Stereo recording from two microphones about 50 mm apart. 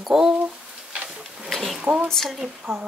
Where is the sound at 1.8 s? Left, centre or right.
Right.